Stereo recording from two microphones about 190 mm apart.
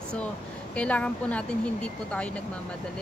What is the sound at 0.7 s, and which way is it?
Speech, 5° left (ahead or behind).